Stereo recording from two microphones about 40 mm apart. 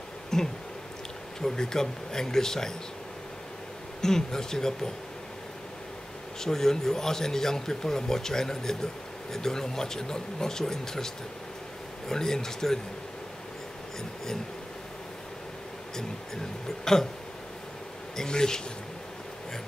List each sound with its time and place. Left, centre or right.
0.3 s a sound: centre
1.4 s speech: centre
4.0 s speech: centre
6.4 s speech: centre
12.1 s speech: centre
16.6 s speech: centre
18.1 s speech: centre